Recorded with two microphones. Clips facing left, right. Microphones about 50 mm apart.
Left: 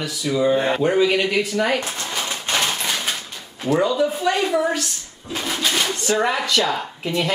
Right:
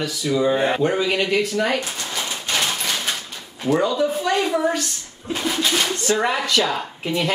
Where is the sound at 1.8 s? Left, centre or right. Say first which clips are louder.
Left 1 dB; left.